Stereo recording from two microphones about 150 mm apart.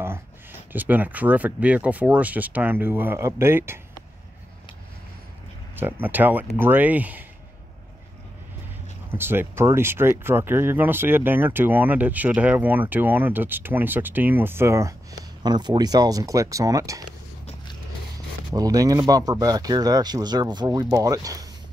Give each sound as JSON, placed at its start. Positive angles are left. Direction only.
{"t": 0.0, "sound": "speech", "side_deg": -15}
{"t": 5.8, "sound": "speech", "side_deg": -15}
{"t": 9.1, "sound": "speech", "side_deg": -15}
{"t": 18.5, "sound": "speech", "side_deg": -25}